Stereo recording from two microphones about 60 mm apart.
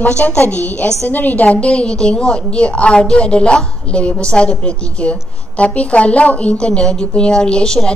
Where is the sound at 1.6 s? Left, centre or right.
Centre.